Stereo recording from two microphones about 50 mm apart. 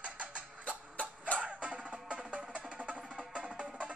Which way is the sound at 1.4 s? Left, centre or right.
Right.